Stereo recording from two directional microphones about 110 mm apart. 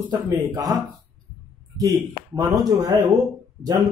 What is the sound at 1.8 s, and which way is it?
A man's voice, 35° right (ahead or behind).